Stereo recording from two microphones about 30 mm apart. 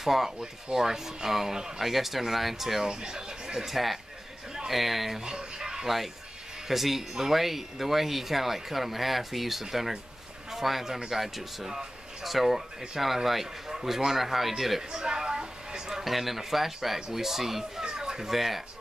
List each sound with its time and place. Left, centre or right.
0.0 s speech: centre
2.8 s speech: right
3.6 s speech: centre
5.2 s a sound: right
6.7 s a man's voice: centre
14.8 s a sound: right
16.0 s speech: centre
17.8 s children playing: centre
18.3 s speech: centre